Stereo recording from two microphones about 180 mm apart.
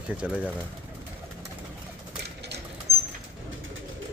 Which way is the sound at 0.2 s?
5° right (ahead or behind).